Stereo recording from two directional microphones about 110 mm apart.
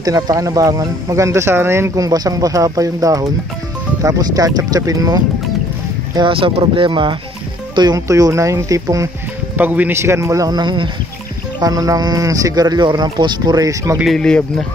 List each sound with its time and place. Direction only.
0.0 s speech: 35° right (ahead or behind)
6.1 s speech: 50° right (ahead or behind)
7.7 s speech: 40° right (ahead or behind)
9.6 s a man's voice: 15° right (ahead or behind); by 10.9 s 45° right (ahead or behind)
11.6 s speech: 35° right (ahead or behind)
14.0 s speech: 5° left (ahead or behind)